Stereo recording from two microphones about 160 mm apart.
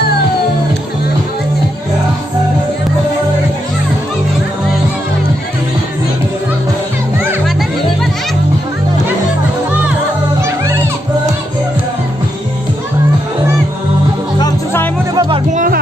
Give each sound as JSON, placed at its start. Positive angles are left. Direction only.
{"t": 10.4, "sound": "music", "side_deg": -15}
{"t": 14.4, "sound": "music", "side_deg": 15}
{"t": 15.1, "sound": "music", "side_deg": -30}
{"t": 15.5, "sound": "music", "side_deg": -55}